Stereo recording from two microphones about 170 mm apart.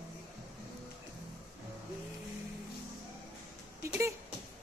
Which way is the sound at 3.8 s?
15° right (ahead or behind).